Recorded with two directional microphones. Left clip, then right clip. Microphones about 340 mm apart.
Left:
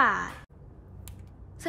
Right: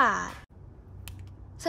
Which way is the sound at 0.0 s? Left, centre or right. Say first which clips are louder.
Even; centre.